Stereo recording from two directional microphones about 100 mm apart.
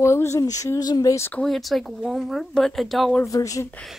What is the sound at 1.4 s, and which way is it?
Speech, centre (ahead or behind).